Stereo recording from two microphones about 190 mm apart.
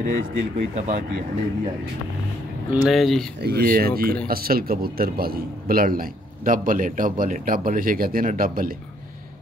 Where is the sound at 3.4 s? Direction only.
60° right (ahead or behind).